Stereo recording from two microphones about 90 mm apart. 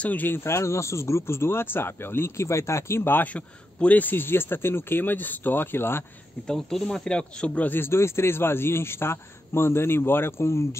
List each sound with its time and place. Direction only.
0.0 s speech: 20° left (ahead or behind)
6.4 s speech: 5° left (ahead or behind); by 10.8 s 30° left (ahead or behind)